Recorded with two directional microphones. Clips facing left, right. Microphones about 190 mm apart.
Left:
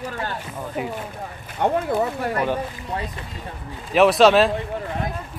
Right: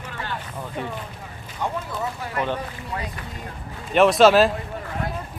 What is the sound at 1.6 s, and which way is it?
Speech, 60° left (ahead or behind).